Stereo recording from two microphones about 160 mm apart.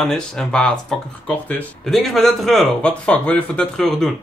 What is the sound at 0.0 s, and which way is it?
Speech, 5° left (ahead or behind).